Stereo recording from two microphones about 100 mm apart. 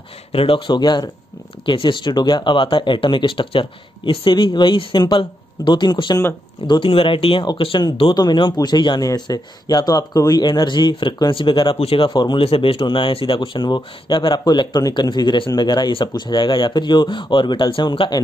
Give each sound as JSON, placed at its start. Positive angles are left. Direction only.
{"t": 0.3, "sound": "speech", "side_deg": 65}
{"t": 6.7, "sound": "speech", "side_deg": 60}
{"t": 8.0, "sound": "speech", "side_deg": 45}
{"t": 11.8, "sound": "a man's voice", "side_deg": 70}
{"t": 12.1, "sound": "speech", "side_deg": 50}
{"t": 12.4, "sound": "speech", "side_deg": 65}